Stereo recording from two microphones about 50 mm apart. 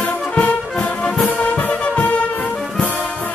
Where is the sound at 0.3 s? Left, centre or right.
Left.